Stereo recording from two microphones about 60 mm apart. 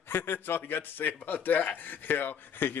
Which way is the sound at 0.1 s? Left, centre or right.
Left.